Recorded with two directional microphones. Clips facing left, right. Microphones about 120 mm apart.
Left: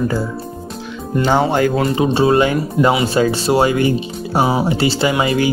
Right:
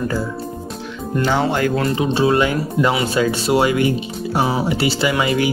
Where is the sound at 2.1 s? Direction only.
30° left (ahead or behind).